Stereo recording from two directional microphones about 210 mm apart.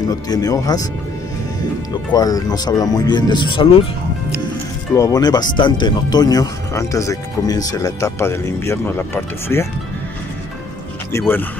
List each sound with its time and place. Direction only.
0.1 s speech: 15° left (ahead or behind)
2.1 s speech: 15° left (ahead or behind)
4.9 s speech: 15° left (ahead or behind)
11.1 s speech: 10° left (ahead or behind)